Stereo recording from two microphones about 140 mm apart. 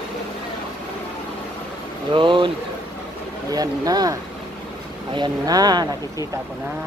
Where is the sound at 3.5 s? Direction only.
25° right (ahead or behind).